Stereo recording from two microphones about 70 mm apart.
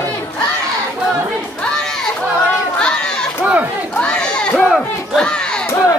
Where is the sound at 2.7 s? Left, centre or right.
Centre.